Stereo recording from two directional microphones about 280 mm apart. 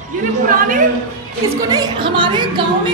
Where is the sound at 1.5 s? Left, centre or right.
Centre.